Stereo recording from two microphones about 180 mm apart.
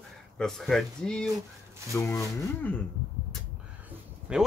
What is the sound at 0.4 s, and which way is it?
Speech, centre (ahead or behind).